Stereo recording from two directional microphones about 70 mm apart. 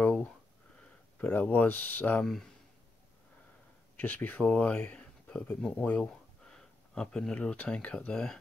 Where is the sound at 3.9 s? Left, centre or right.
Left.